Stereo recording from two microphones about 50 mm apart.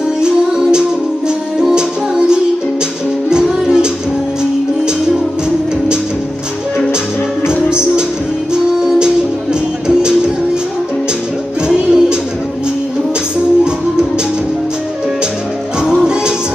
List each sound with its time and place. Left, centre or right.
0.2 s music: centre
8.8 s music: centre
11.6 s music: centre
15.8 s music: centre